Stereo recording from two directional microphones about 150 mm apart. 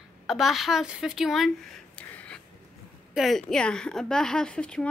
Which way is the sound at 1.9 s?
10° left (ahead or behind).